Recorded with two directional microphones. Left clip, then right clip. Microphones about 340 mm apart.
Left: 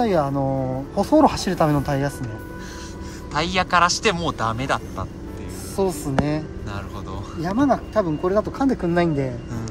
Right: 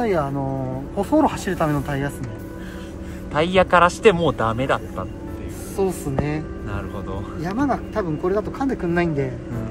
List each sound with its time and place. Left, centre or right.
0.0 s speech: left
3.3 s speech: centre
5.8 s speech: left
7.4 s speech: left